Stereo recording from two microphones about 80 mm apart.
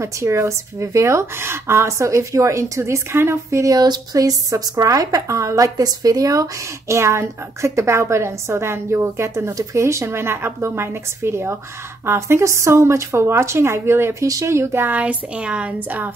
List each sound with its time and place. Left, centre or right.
0.0 s a woman's voice: right
7.0 s a woman's voice: right
14.2 s a woman's voice: right
15.0 s a woman's voice: centre